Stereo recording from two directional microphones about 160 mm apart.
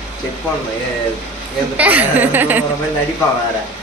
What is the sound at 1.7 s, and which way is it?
Speech, 10° right (ahead or behind).